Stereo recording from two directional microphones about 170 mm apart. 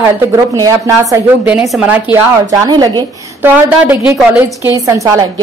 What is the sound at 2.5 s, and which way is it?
Speech, 20° right (ahead or behind).